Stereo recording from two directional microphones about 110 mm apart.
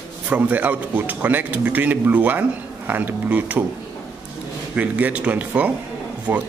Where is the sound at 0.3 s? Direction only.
15° right (ahead or behind).